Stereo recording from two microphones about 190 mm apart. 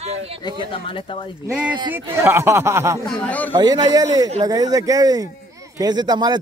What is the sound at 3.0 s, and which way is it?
Speech, 5° left (ahead or behind).